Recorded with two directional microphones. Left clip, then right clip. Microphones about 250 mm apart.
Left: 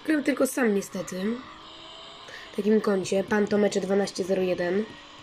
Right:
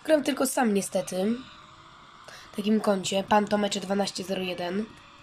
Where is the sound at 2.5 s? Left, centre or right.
Centre.